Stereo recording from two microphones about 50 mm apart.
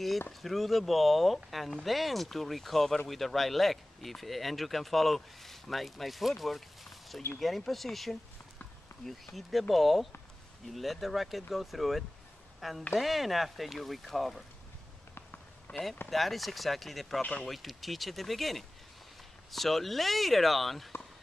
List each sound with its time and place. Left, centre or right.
0.4 s speech: centre
15.7 s speech: left
16.1 s speech: centre
17.2 s speech: left
17.5 s speech: centre